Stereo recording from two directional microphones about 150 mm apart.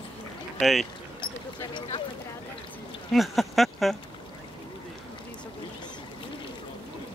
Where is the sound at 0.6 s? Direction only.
Centre (ahead or behind).